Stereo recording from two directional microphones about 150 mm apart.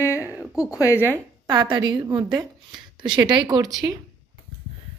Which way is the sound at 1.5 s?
25° right (ahead or behind).